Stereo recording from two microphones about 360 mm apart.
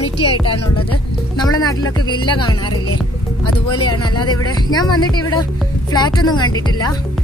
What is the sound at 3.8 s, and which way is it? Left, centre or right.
Speech, centre.